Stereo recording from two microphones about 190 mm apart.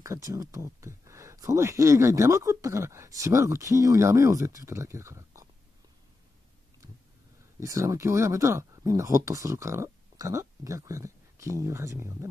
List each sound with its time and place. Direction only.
0.0 s speech: 15° right (ahead or behind)
7.6 s speech: 15° right (ahead or behind)